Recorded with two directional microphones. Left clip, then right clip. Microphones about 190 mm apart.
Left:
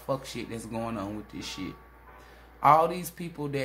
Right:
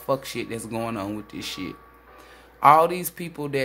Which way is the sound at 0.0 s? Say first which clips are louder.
Right 6 dB; 40° right (ahead or behind).